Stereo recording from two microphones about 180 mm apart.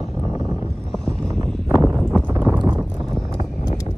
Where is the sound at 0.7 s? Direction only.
5° left (ahead or behind).